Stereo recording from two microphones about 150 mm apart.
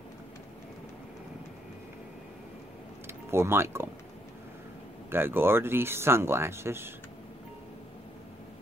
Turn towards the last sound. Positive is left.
turn(degrees=-15)  # may be behind; listen again after turning